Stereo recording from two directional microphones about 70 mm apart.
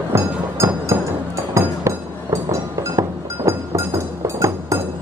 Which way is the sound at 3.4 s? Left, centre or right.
Right.